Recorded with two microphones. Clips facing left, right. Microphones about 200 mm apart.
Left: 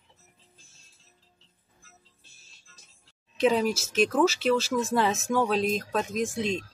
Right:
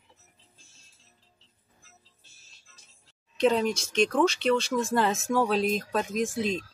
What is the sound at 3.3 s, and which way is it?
Speech, centre (ahead or behind).